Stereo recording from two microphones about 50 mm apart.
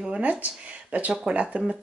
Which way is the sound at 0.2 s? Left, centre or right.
Right.